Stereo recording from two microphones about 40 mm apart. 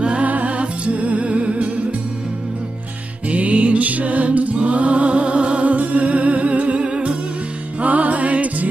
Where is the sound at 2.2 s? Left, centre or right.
Centre.